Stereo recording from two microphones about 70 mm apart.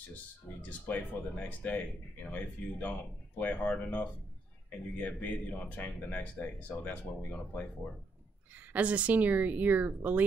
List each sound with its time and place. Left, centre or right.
0.1 s speech: left
8.7 s speech: centre